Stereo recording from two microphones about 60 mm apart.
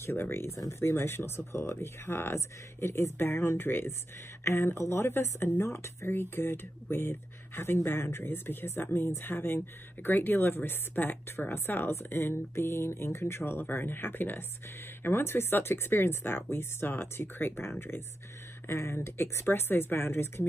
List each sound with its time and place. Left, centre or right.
0.0 s speech: left